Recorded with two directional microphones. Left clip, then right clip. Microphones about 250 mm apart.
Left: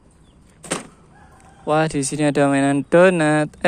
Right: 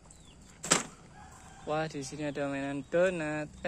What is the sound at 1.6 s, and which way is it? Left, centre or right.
Speech, left.